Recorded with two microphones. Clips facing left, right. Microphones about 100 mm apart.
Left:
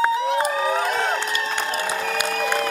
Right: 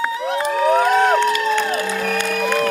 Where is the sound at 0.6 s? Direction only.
55° right (ahead or behind).